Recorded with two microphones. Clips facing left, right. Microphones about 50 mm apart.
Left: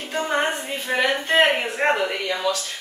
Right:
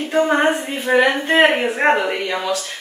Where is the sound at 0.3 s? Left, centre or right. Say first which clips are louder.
Right 6 dB; right.